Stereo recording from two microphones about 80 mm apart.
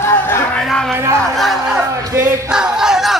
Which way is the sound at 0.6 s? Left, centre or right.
Centre.